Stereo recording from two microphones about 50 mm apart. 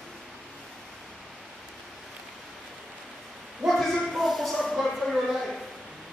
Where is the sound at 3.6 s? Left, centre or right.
Centre.